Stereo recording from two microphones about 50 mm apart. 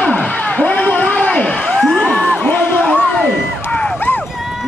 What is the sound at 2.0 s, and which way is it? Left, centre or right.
Crowd, left.